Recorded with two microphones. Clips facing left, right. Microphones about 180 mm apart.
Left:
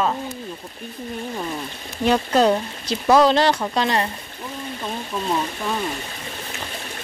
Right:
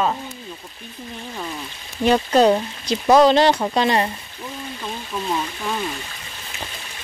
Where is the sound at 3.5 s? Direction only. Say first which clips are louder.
Right 2 dB; 20° right (ahead or behind).